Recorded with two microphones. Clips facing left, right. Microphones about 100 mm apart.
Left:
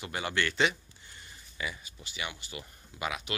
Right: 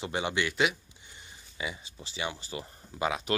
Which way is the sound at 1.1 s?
20° right (ahead or behind).